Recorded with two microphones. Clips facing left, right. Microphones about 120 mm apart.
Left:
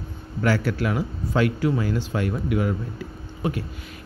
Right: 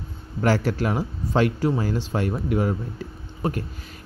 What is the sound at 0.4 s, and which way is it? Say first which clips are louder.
Speech: right 1 dB; 40° right (ahead or behind).